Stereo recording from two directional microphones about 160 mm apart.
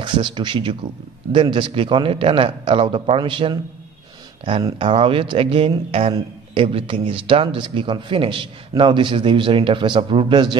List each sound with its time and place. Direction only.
0.0 s a man's voice: 30° right (ahead or behind)
4.7 s a man's voice: 30° right (ahead or behind)